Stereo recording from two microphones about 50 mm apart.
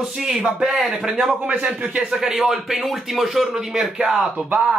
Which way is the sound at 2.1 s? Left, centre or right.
Centre.